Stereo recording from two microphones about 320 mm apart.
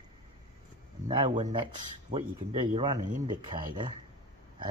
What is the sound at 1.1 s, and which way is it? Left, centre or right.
Speech, centre.